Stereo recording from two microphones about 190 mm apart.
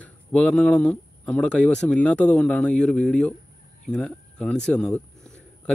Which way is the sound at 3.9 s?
5° left (ahead or behind).